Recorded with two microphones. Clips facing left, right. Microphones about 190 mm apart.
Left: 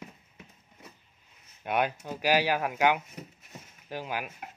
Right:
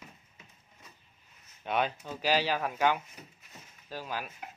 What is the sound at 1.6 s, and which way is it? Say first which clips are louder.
A man's voice: left 2 dB; 10° left (ahead or behind).